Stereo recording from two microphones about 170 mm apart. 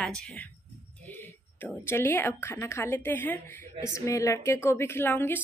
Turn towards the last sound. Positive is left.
turn(degrees=10)  # may be behind; listen again after turning